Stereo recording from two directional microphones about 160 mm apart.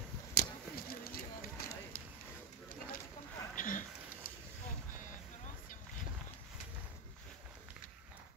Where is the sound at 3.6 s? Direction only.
55° left (ahead or behind).